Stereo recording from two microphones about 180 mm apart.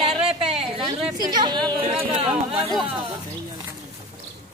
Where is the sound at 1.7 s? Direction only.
30° right (ahead or behind).